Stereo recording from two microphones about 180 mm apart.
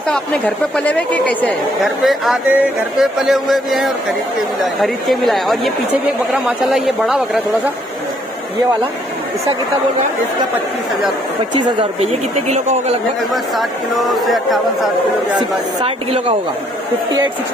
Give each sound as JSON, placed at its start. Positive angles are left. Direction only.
{"t": 0.1, "sound": "a woman's voice", "side_deg": 5}
{"t": 11.5, "sound": "speech", "side_deg": -35}
{"t": 13.3, "sound": "a woman's voice", "side_deg": 0}
{"t": 15.3, "sound": "speech", "side_deg": -30}